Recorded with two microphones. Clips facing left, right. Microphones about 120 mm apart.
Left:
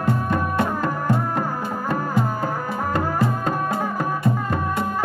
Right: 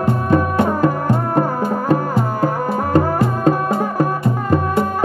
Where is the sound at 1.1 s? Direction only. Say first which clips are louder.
Right 5 dB; 45° right (ahead or behind).